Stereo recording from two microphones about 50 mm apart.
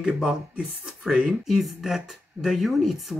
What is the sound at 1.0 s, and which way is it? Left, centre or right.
Speech, right.